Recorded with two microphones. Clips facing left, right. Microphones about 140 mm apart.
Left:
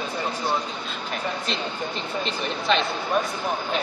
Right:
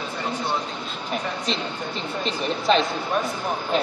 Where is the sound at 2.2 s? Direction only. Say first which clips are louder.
Right 6 dB; 35° right (ahead or behind).